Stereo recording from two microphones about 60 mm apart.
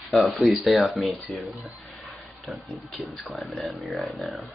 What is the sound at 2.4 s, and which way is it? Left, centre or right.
Speech, centre.